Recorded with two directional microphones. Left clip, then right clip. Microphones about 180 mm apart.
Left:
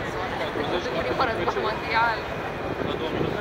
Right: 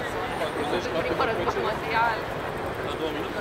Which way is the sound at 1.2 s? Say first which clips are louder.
Left 2 dB; 30° right (ahead or behind).